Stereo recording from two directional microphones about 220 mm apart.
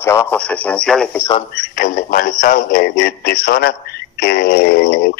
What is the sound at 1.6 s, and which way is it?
Speech, 35° left (ahead or behind).